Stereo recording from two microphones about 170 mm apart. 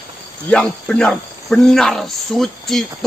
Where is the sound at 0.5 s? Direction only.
5° left (ahead or behind).